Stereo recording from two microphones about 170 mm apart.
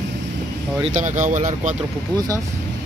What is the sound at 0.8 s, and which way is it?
Speech, 45° right (ahead or behind).